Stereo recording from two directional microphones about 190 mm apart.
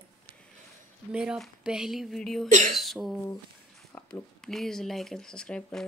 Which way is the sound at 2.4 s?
40° right (ahead or behind).